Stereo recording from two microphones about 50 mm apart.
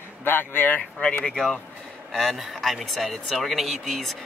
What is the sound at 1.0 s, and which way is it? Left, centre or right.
Speech, centre.